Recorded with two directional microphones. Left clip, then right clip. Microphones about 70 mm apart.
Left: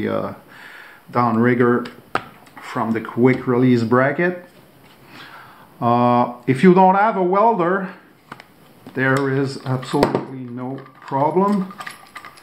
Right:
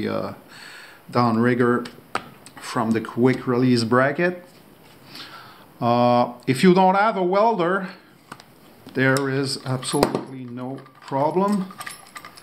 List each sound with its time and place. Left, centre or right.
0.0 s speech: right
1.4 s speech: right
1.8 s a sound: centre
2.7 s speech: right
5.1 s a sound: right
6.4 s speech: right
9.1 s speech: right
9.9 s speech: centre
11.4 s a sound: right